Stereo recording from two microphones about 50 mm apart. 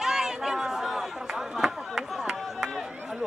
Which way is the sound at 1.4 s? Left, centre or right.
Centre.